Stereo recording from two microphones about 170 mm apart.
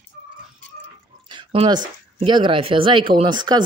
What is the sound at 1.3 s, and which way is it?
Speech, 30° right (ahead or behind).